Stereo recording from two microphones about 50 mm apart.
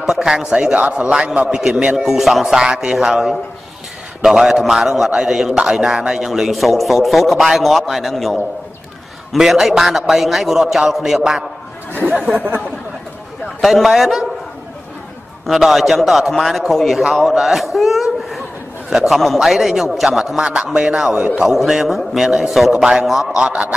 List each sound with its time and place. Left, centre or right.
0.0 s a man's voice: centre
13.6 s a man's voice: centre
15.4 s a man's voice: centre
23.4 s a man's voice: right